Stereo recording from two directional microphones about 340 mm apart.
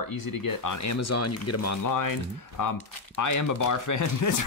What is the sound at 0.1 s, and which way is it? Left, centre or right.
Speech, left.